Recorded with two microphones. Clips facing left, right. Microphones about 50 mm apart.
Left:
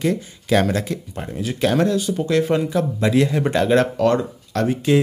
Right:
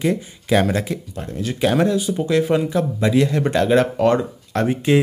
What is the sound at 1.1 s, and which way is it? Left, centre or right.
Speech, centre.